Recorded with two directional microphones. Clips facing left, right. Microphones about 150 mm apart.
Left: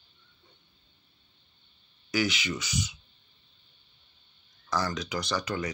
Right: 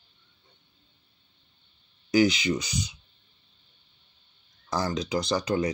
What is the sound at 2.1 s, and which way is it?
Speech, 30° right (ahead or behind).